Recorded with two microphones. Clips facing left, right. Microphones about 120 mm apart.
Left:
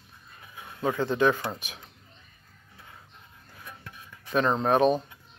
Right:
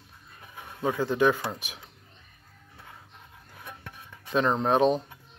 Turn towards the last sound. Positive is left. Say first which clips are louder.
# even
turn(degrees=-15)  # may be behind; listen again after turning